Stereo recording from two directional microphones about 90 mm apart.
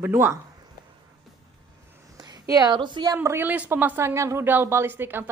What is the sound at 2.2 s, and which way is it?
Speech, 45° right (ahead or behind).